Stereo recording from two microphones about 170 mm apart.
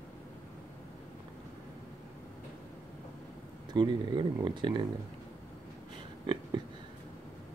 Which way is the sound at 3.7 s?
25° right (ahead or behind).